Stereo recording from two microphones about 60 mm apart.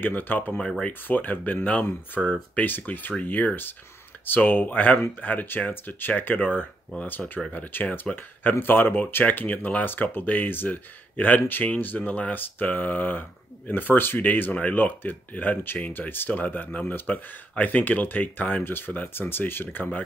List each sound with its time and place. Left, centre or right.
0.0 s speech: left
0.6 s speech: centre
1.0 s speech: left